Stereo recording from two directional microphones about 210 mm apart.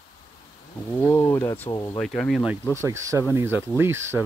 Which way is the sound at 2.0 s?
5° left (ahead or behind).